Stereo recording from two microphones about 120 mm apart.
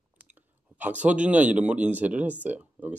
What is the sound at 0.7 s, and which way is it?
Speech, 10° right (ahead or behind).